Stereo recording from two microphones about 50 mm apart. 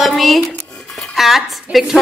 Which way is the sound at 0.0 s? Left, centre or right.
Centre.